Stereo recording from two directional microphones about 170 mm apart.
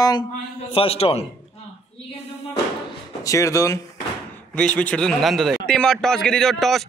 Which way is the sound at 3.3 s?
20° left (ahead or behind).